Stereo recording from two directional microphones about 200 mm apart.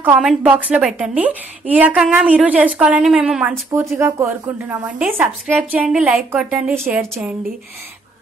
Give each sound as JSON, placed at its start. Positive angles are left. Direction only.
{"t": 0.0, "sound": "a woman's voice", "side_deg": -5}